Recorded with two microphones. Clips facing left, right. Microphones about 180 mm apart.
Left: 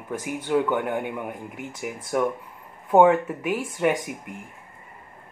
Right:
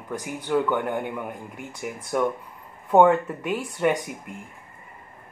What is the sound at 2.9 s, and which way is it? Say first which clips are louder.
Speech: even; 5° left (ahead or behind).